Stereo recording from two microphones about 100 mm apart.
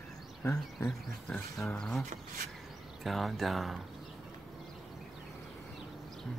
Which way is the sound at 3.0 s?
Centre (ahead or behind).